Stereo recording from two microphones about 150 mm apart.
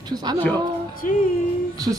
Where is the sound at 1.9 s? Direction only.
30° right (ahead or behind).